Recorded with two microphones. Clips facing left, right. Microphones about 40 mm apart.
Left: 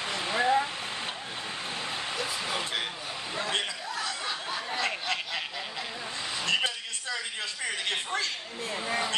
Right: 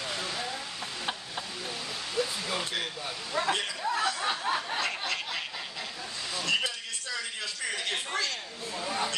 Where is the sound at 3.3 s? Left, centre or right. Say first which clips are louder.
Right 2 dB; left.